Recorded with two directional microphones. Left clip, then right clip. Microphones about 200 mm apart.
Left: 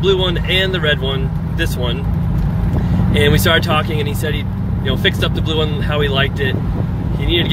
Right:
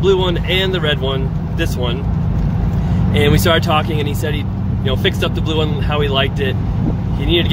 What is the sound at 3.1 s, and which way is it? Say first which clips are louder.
Speech: even; 10° right (ahead or behind).